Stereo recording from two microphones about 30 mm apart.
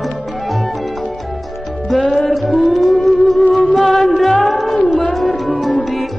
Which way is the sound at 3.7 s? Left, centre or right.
Centre.